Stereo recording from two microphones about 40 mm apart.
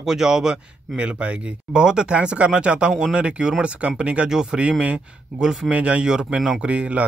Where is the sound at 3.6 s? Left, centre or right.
Right.